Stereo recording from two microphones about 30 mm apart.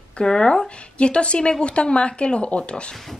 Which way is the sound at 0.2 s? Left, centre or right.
Left.